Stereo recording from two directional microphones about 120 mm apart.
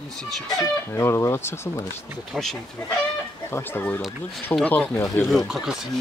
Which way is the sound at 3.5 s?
20° left (ahead or behind).